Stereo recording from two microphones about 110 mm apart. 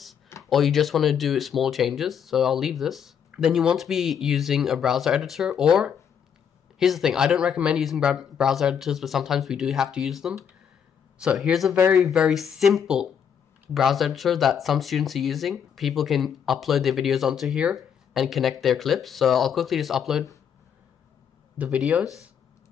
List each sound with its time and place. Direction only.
0.4 s speech: centre (ahead or behind)
11.7 s speech: 20° right (ahead or behind)
12.0 s speech: 5° right (ahead or behind)
21.5 s speech: 10° right (ahead or behind)